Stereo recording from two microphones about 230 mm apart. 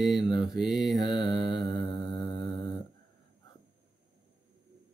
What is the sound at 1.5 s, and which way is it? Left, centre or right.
Mantra, centre.